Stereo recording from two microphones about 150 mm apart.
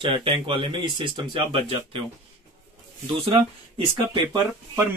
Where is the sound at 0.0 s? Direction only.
35° right (ahead or behind).